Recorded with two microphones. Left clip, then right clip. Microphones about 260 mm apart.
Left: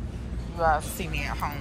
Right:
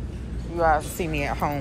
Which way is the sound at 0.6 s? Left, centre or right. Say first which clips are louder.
Right 3 dB; left.